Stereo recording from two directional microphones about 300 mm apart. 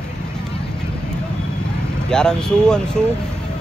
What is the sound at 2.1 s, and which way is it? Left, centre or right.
Speech, centre.